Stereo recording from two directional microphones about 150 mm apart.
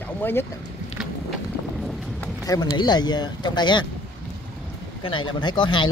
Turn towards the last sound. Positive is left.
turn(degrees=30)  # may be behind; listen again after turning